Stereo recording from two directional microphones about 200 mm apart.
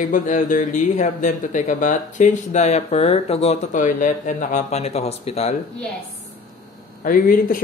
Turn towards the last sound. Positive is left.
turn(degrees=45)  # may be behind; listen again after turning